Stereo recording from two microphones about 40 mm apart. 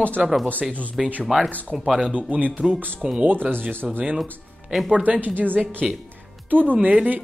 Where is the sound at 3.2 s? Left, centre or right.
Right.